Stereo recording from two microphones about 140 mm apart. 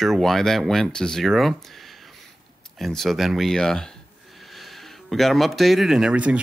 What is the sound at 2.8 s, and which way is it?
Speech, centre (ahead or behind).